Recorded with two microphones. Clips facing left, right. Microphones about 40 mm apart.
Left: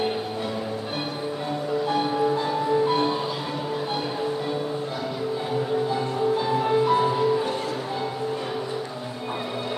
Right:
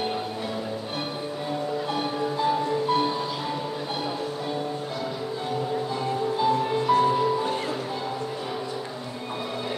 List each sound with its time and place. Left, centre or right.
2.4 s music: centre
5.9 s music: centre